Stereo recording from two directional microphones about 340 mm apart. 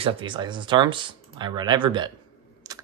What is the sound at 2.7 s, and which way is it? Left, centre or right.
Computer keyboard, centre.